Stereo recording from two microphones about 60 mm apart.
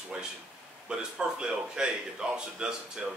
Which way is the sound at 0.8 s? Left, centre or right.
Centre.